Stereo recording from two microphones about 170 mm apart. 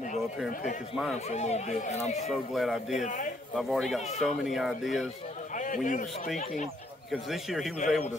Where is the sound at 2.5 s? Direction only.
Centre (ahead or behind).